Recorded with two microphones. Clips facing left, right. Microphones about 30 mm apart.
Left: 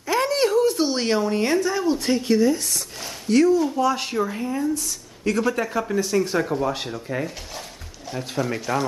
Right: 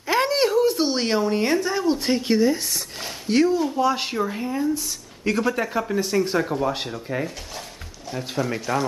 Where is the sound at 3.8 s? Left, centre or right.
Centre.